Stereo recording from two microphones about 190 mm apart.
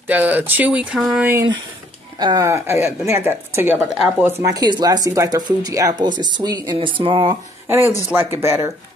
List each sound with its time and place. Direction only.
0.1 s speech: 10° right (ahead or behind)
2.1 s speech: 20° right (ahead or behind)
8.1 s speech: 10° right (ahead or behind)